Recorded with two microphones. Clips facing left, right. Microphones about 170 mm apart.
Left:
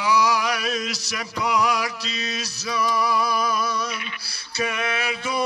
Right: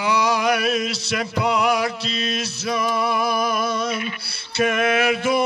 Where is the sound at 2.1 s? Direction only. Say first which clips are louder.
Right 5 dB; 55° right (ahead or behind).